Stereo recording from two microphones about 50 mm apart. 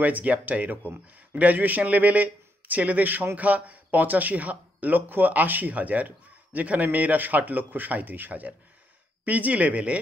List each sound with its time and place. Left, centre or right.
0.0 s speech: right